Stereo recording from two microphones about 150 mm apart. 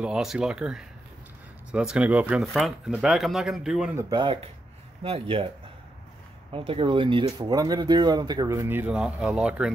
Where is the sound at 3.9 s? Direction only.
30° right (ahead or behind).